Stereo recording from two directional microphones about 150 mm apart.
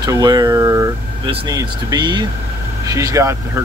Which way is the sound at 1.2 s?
35° right (ahead or behind).